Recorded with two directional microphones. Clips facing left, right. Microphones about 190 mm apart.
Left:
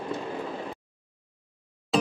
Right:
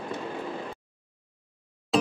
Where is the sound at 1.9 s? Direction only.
Centre (ahead or behind).